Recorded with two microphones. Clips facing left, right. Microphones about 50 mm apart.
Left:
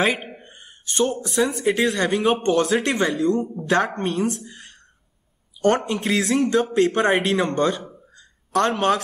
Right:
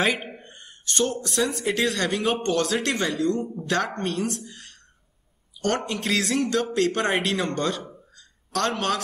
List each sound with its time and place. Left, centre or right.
0.0 s speech: centre
2.5 s a man's voice: left
4.5 s a sound: left
5.9 s speech: centre
6.5 s a man's voice: left
8.1 s a sound: left